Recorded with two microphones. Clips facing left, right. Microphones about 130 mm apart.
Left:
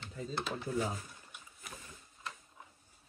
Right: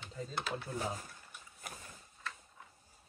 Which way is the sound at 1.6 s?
45° right (ahead or behind).